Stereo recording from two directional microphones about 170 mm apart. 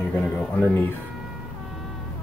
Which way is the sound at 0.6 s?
15° left (ahead or behind).